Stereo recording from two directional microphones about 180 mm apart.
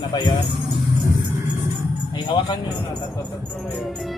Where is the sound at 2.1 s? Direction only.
25° left (ahead or behind).